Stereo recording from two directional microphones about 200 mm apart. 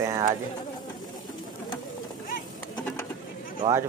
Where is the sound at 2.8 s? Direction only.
10° left (ahead or behind).